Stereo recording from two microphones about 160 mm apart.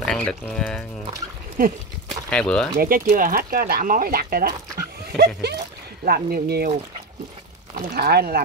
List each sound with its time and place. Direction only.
0.0 s speech: 5° left (ahead or behind)
2.2 s speech: 5° left (ahead or behind)
2.8 s speech: 60° right (ahead or behind); by 5.6 s 90° right
6.0 s speech: 70° right (ahead or behind)
7.7 s speech: 80° right